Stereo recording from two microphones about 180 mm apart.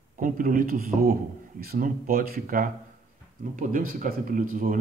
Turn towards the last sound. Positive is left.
turn(degrees=-50)  # may be behind; listen again after turning